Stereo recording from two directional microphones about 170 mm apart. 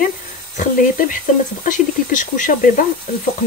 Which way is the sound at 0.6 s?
55° left (ahead or behind).